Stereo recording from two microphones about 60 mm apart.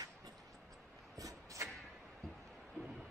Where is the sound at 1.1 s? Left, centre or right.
Right.